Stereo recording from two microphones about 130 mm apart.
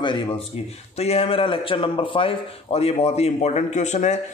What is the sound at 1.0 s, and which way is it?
A man's voice, 50° left (ahead or behind).